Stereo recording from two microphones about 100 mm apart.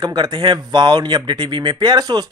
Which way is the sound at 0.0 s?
45° right (ahead or behind).